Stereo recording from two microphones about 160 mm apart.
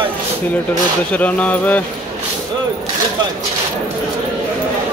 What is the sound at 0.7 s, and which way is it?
Speech, 10° left (ahead or behind).